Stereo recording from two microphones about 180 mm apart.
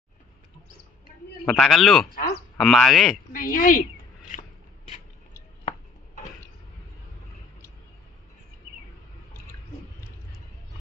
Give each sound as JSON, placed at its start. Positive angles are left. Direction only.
{"t": 1.4, "sound": "a man's voice", "side_deg": 0}
{"t": 2.0, "sound": "speech", "side_deg": 55}
{"t": 2.5, "sound": "a man's voice", "side_deg": 0}
{"t": 3.3, "sound": "a sound", "side_deg": 50}